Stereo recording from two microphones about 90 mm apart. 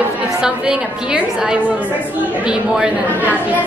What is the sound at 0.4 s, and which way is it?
Speech, 10° right (ahead or behind).